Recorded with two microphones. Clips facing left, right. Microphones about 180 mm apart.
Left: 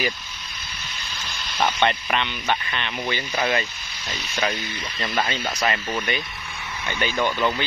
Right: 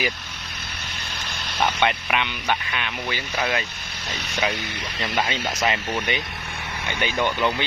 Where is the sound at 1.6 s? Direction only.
5° right (ahead or behind).